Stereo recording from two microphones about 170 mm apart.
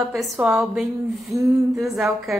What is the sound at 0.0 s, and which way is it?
A woman's voice, centre (ahead or behind).